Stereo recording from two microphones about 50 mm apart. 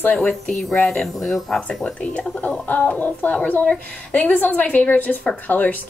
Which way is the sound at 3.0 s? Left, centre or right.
Left.